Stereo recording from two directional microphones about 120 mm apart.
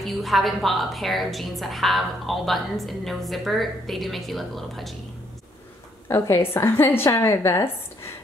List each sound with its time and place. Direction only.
0.0 s a woman's voice: centre (ahead or behind)
6.0 s a woman's voice: 20° left (ahead or behind)